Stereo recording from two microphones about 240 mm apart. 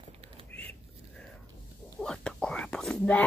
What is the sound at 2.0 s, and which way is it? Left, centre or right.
Whispering, centre.